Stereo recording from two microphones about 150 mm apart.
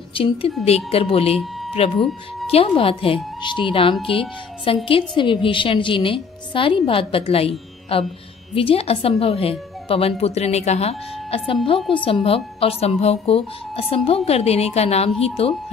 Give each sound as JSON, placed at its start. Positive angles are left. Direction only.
{"t": 0.1, "sound": "a woman's voice", "side_deg": 40}